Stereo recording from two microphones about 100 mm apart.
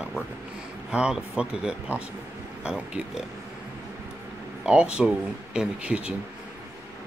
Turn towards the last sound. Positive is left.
turn(degrees=-10)  # may be behind; listen again after turning